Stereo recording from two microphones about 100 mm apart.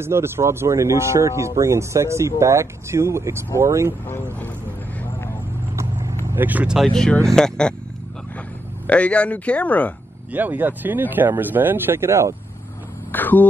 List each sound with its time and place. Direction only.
0.0 s speech: 25° right (ahead or behind)
5.8 s vehicle: 30° right (ahead or behind)
6.3 s speech: 15° right (ahead or behind)
6.8 s a man's voice: 5° left (ahead or behind)
8.8 s a man's voice: 10° left (ahead or behind)
10.3 s speech: 20° right (ahead or behind)
13.1 s a man's voice: 20° left (ahead or behind)